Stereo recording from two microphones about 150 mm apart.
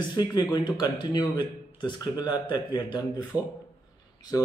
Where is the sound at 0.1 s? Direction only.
25° left (ahead or behind).